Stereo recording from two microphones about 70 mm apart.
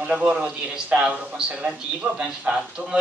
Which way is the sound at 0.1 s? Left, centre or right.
Centre.